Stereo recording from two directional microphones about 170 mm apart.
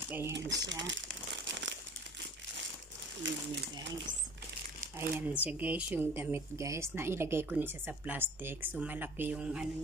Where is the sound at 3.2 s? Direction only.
90° right.